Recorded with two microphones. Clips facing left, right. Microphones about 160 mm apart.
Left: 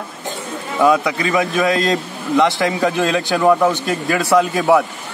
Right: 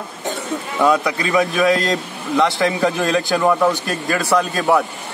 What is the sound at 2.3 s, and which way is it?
Speech, 15° left (ahead or behind).